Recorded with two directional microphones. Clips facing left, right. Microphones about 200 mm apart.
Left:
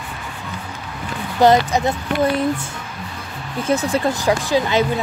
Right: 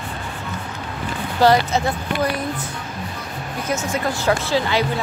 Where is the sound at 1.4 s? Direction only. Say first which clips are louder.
Left 2 dB; 20° left (ahead or behind).